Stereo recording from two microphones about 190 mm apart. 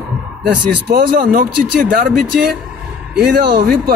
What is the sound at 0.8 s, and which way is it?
Speech, 55° right (ahead or behind).